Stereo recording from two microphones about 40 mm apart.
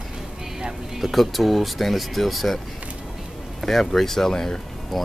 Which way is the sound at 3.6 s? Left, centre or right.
Centre.